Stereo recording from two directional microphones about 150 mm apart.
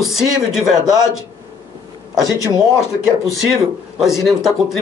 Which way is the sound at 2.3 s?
20° left (ahead or behind).